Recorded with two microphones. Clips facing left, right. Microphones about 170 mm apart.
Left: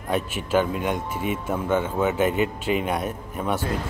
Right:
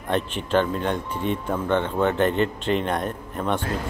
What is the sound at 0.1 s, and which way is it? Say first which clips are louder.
A man's voice: even; 5° left (ahead or behind).